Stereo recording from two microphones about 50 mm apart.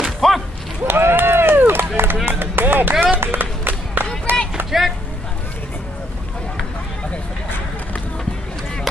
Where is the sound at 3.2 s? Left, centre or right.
Right.